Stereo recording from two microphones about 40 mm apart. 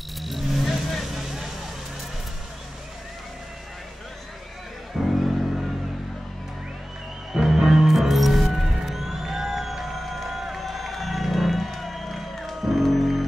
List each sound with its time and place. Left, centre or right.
0.2 s vehicle: centre
4.9 s music: centre
7.4 s music: centre